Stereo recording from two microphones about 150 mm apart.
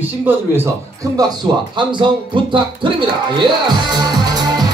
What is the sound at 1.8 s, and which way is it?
Music, 30° right (ahead or behind).